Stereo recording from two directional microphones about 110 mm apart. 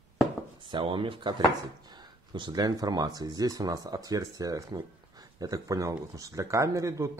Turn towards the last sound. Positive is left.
turn(degrees=-30)  # may be behind; listen again after turning